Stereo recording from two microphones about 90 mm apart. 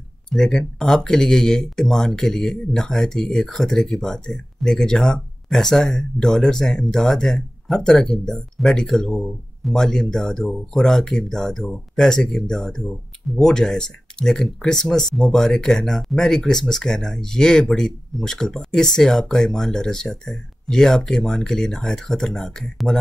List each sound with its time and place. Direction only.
0.3 s speech: 5° left (ahead or behind)